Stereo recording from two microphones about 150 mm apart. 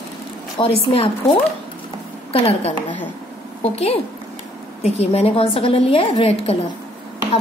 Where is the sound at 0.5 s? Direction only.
40° left (ahead or behind).